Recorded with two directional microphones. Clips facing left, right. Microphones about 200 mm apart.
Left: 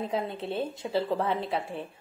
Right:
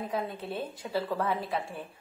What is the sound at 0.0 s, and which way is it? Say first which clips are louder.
A woman's voice: left 3 dB; 25° left (ahead or behind).